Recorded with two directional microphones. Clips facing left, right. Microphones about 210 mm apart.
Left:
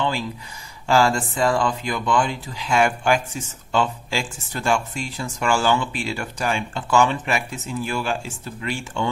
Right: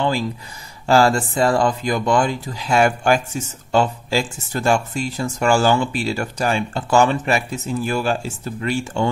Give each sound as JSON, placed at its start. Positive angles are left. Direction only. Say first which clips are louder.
{"t": 0.8, "sound": "speech", "louder": "right 3 dB", "side_deg": -40}